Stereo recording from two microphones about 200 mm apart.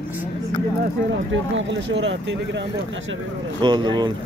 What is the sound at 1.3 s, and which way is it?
Speech, 65° right (ahead or behind).